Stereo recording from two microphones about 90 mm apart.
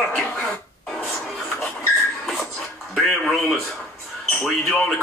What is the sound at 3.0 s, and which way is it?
Speech, 5° left (ahead or behind).